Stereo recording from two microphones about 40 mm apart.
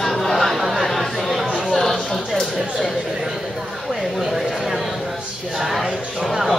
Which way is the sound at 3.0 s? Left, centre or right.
Centre.